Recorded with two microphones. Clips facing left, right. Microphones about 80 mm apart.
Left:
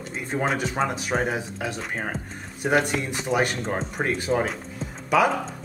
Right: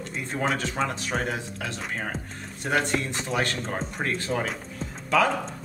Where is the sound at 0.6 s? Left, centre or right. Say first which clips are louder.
Left 3 dB; centre.